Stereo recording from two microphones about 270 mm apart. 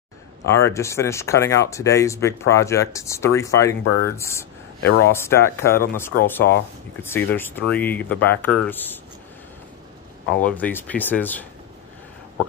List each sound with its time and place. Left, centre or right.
0.5 s speech: centre
4.8 s speech: left
5.1 s speech: centre
10.2 s speech: centre